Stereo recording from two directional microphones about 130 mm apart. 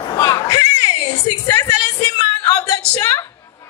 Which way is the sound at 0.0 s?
30° left (ahead or behind).